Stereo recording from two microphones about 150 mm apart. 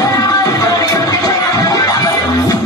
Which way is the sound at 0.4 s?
25° left (ahead or behind).